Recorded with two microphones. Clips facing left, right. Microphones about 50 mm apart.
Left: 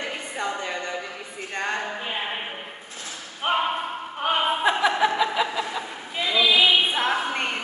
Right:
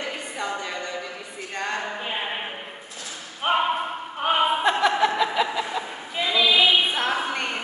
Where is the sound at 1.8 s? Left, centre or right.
Centre.